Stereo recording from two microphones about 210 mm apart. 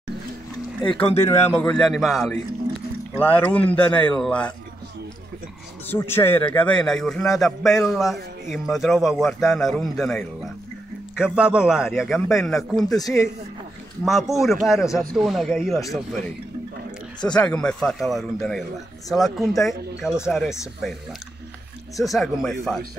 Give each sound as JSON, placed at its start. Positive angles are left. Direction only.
{"t": 1.5, "sound": "a man's voice", "side_deg": 5}
{"t": 5.9, "sound": "a man's voice", "side_deg": 10}
{"t": 12.8, "sound": "speech", "side_deg": 15}
{"t": 14.0, "sound": "a man's voice", "side_deg": 0}
{"t": 22.0, "sound": "a man's voice", "side_deg": 0}